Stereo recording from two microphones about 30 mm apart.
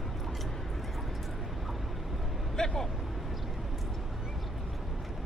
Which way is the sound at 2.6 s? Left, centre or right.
Left.